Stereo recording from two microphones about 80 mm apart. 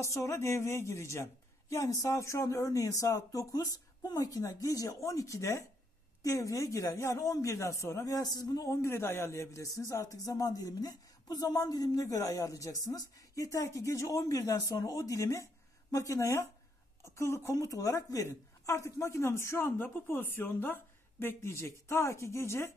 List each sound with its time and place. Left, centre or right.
0.0 s speech: left
8.8 s a woman's voice: left
17.6 s speech: left